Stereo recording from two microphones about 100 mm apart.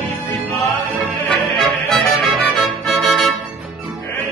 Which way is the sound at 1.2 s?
Centre (ahead or behind).